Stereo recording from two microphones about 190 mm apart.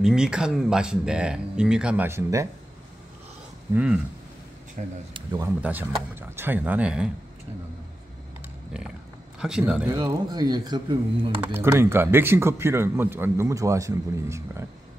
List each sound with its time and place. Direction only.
0.0 s speech: 5° right (ahead or behind)
3.7 s speech: 5° right (ahead or behind)
4.8 s speech: 40° right (ahead or behind)
5.1 s speech: 25° right (ahead or behind)
5.5 s speech: 10° right (ahead or behind)
9.4 s speech: 5° right (ahead or behind)
9.9 s speech: 20° right (ahead or behind)